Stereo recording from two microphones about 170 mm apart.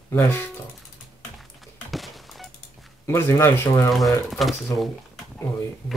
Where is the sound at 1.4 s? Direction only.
Centre (ahead or behind).